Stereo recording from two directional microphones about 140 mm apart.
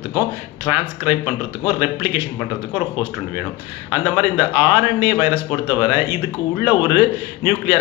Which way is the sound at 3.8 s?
10° right (ahead or behind).